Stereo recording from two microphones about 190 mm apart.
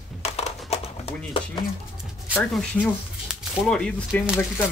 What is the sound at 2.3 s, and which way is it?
Speech, 5° left (ahead or behind).